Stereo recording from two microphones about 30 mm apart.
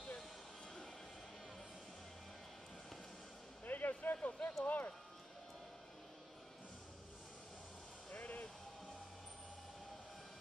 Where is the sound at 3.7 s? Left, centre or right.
Left.